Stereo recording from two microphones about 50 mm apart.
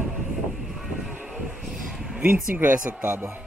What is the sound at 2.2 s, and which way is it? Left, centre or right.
Speech, right.